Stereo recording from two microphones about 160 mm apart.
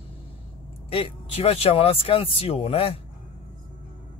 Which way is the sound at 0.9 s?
35° left (ahead or behind).